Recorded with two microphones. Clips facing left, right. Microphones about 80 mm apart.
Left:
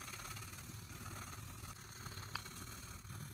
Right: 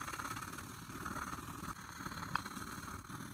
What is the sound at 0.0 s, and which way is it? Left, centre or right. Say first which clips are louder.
Vehicle: right 9 dB; right.